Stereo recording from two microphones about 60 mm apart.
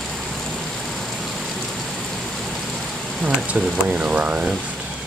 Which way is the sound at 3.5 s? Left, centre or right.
Centre.